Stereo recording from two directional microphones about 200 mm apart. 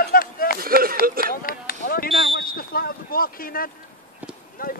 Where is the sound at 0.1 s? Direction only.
45° left (ahead or behind).